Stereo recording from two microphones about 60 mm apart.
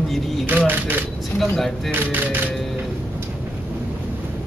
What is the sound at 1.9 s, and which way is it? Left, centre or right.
Speech, right.